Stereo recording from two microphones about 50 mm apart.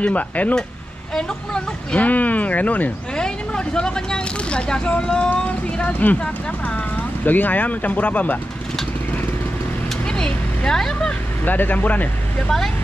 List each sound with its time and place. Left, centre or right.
0.0 s speech: left
1.1 s speech: centre
2.0 s speech: left
3.2 s speech: centre
7.2 s speech: left
10.0 s vehicle: centre
11.4 s speech: left
12.4 s speech: centre